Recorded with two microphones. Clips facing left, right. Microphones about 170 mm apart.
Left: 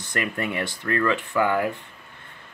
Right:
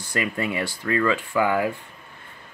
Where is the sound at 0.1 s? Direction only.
10° right (ahead or behind).